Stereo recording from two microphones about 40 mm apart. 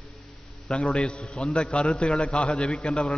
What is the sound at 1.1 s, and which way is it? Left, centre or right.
A man's voice, left.